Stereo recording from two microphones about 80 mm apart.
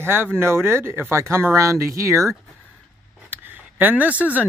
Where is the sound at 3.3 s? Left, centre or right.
Right.